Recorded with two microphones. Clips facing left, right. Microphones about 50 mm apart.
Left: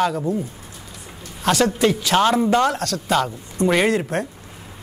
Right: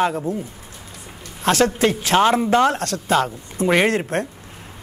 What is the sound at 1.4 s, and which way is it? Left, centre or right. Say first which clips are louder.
Speech: right 1 dB; right.